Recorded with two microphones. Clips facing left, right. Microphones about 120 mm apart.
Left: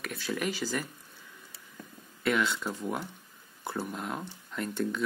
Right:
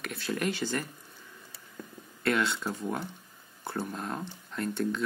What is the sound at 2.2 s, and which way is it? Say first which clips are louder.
Speech: even; centre (ahead or behind).